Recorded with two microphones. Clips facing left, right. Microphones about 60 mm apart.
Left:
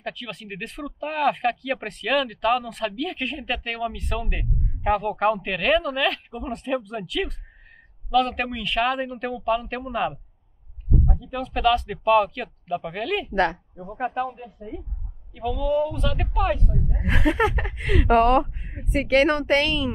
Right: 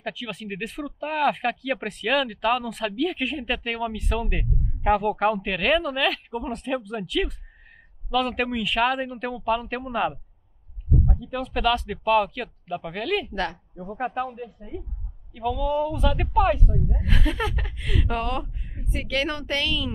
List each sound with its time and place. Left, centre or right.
0.0 s speech: centre
13.3 s a woman's voice: left
13.7 s speech: centre
17.0 s speech: left
18.9 s speech: left